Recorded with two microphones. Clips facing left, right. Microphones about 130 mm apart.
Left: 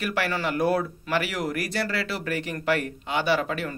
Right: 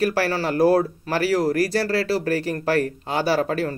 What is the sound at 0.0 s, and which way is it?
Speech, 35° right (ahead or behind).